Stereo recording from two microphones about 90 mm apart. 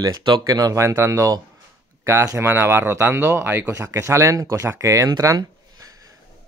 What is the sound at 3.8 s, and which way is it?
Speech, 35° right (ahead or behind).